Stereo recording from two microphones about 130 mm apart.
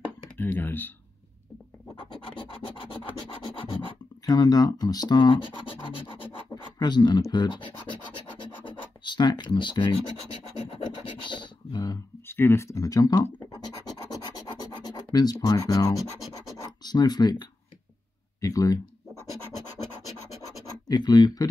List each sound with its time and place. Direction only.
0.4 s speech: 15° left (ahead or behind)
2.2 s scratch: 45° left (ahead or behind)
4.3 s scratch: 30° left (ahead or behind)
12.3 s speech: 20° left (ahead or behind)
13.8 s scratch: 30° left (ahead or behind)
16.2 s scratch: centre (ahead or behind)
16.8 s speech: 30° left (ahead or behind)
20.9 s speech: 35° left (ahead or behind)